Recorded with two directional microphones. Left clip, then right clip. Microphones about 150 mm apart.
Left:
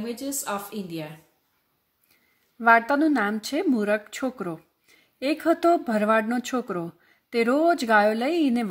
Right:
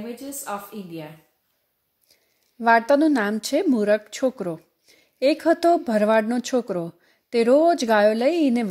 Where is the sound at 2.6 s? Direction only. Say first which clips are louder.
Right 2 dB; 50° right (ahead or behind).